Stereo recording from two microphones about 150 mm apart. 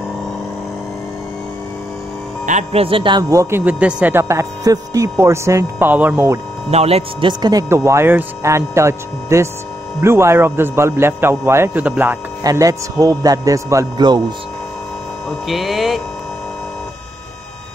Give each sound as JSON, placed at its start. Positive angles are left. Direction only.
{"t": 2.4, "sound": "a man's voice", "side_deg": -45}
{"t": 6.7, "sound": "speech", "side_deg": -45}
{"t": 7.7, "sound": "a man's voice", "side_deg": -20}
{"t": 12.4, "sound": "a man's voice", "side_deg": -25}
{"t": 15.2, "sound": "mains hum", "side_deg": 0}